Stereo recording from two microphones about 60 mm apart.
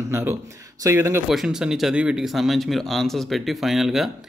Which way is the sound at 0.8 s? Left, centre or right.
Right.